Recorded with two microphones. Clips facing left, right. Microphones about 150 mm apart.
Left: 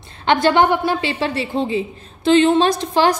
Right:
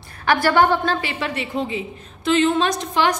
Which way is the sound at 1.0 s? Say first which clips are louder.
Left 5 dB; 30° left (ahead or behind).